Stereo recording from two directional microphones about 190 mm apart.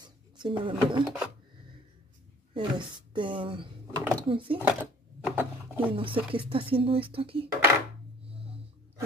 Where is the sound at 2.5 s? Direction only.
25° right (ahead or behind).